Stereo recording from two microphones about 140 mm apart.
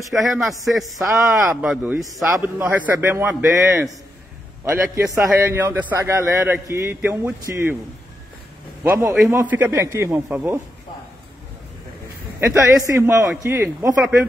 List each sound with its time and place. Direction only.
0.1 s a man's voice: centre (ahead or behind)
1.1 s a man's voice: 20° right (ahead or behind)
1.6 s a man's voice: 5° right (ahead or behind)
8.8 s a man's voice: 20° right (ahead or behind)
12.4 s a man's voice: 20° right (ahead or behind)